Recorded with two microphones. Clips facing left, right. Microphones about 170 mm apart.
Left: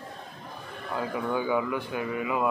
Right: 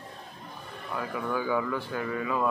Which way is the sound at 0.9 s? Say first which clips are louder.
Left 2 dB; 25° left (ahead or behind).